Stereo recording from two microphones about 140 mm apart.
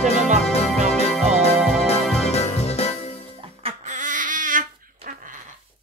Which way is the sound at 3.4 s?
45° right (ahead or behind).